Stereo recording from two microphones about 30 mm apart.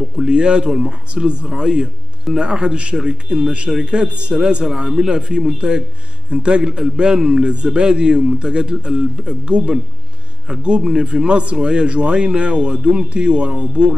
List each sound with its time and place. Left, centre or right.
0.3 s a man's voice: right